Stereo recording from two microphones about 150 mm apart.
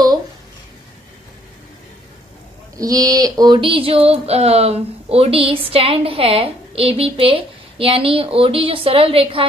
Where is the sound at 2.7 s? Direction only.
25° right (ahead or behind).